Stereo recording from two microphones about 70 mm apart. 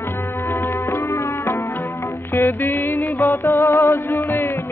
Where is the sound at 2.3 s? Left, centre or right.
Left.